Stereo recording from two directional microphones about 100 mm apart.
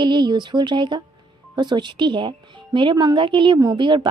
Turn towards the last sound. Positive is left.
turn(degrees=-55)  # may be behind; listen again after turning